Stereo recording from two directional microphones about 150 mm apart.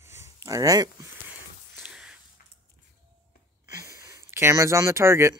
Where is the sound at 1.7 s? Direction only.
5° right (ahead or behind).